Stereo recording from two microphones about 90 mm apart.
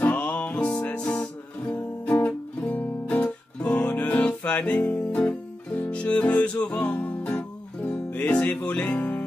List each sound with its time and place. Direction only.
0.0 s music: 20° left (ahead or behind)